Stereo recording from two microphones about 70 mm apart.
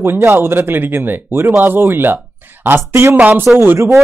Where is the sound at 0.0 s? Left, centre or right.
Right.